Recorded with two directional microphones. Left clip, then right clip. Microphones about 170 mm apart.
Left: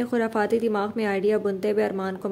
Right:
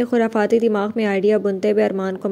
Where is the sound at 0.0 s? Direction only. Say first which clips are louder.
Right 6 dB; 15° right (ahead or behind).